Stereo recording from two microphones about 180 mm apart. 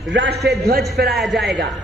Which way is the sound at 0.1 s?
75° right (ahead or behind).